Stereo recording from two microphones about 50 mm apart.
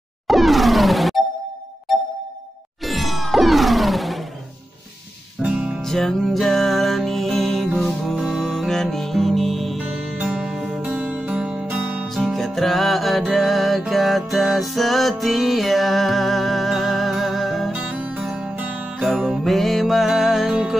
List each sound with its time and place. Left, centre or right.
0.3 s music: centre
2.8 s music: centre
5.5 s music: right
5.8 s music: centre
10.2 s music: centre
10.5 s music: centre
10.8 s music: right
11.7 s music: right
12.1 s music: centre
17.8 s music: right
18.2 s music: centre
18.6 s music: right
19.4 s music: centre